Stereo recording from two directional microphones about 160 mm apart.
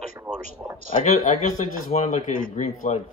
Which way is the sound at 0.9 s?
50° left (ahead or behind).